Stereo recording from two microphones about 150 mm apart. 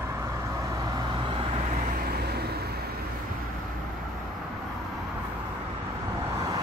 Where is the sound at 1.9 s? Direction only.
90° right.